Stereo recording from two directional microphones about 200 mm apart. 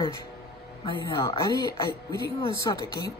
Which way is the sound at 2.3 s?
20° left (ahead or behind).